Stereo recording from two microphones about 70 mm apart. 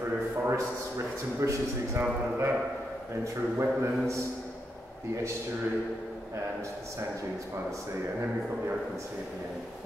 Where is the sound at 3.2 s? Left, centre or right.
Right.